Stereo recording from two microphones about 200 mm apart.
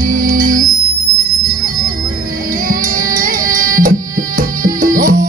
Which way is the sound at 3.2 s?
45° right (ahead or behind).